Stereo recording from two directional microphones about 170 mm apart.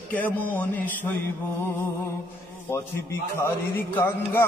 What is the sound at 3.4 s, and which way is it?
Mantra, 10° left (ahead or behind).